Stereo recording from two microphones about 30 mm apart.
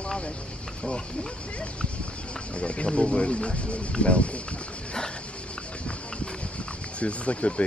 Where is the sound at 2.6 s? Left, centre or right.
Left.